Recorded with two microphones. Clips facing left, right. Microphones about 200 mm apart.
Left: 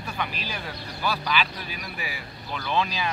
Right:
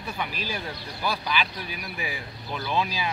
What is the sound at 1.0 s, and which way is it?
Speech, 15° right (ahead or behind).